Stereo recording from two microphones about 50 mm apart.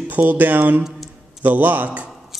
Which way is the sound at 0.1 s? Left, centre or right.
Right.